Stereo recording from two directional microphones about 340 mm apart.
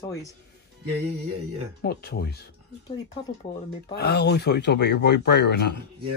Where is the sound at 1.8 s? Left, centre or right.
Left.